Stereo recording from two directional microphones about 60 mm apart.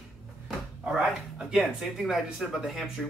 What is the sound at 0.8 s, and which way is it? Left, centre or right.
Speech, centre.